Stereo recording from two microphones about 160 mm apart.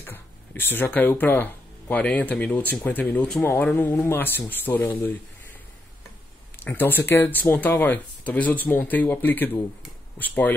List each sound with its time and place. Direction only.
0.0 s speech: 15° left (ahead or behind)
6.6 s speech: 10° left (ahead or behind)